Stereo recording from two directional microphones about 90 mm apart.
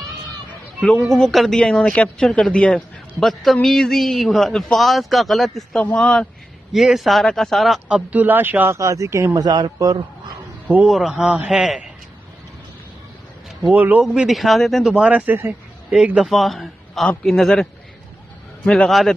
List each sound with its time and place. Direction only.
0.7 s a man's voice: 10° left (ahead or behind)
7.9 s speech: 20° right (ahead or behind)
8.7 s speech: 35° right (ahead or behind)
9.4 s speech: 50° right (ahead or behind)
10.9 s a man's voice: centre (ahead or behind)
13.7 s a man's voice: 15° right (ahead or behind)
14.0 s a man's voice: 5° right (ahead or behind)
15.0 s speech: 15° right (ahead or behind)
16.3 s a man's voice: centre (ahead or behind)
18.7 s a man's voice: 5° left (ahead or behind)